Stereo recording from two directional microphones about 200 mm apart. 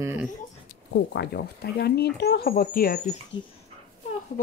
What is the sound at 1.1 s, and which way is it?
Speech, 55° left (ahead or behind).